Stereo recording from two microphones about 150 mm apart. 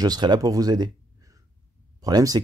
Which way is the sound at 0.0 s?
25° right (ahead or behind).